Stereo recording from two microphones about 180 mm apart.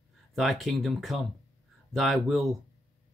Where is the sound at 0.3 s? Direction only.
Centre (ahead or behind).